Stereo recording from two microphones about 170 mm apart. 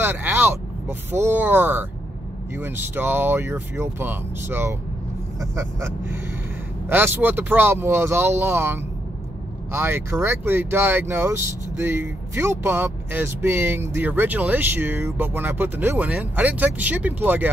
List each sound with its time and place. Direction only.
0.0 s speech: 10° right (ahead or behind)